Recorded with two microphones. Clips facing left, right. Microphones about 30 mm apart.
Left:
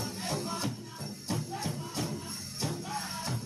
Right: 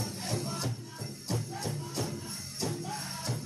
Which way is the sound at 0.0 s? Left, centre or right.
Centre.